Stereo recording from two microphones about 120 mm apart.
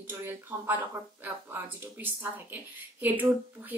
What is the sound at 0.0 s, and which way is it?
A woman's voice, 20° right (ahead or behind).